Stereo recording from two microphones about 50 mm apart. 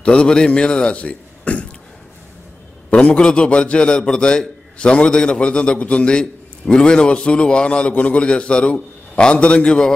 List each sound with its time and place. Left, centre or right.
0.0 s a man's voice: centre
2.9 s a man's voice: left